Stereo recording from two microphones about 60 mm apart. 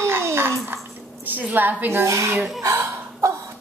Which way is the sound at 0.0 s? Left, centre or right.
Right.